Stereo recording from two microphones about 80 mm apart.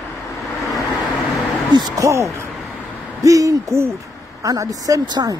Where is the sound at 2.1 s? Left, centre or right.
Right.